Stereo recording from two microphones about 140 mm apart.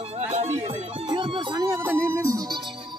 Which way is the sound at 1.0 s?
35° right (ahead or behind).